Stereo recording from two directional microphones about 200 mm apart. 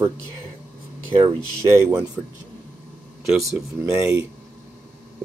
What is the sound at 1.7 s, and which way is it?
Speech, 15° right (ahead or behind).